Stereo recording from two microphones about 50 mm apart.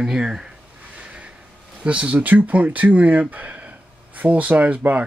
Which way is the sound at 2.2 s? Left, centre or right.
Right.